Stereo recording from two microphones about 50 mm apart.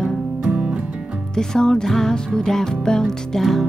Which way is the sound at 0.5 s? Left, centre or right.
Centre.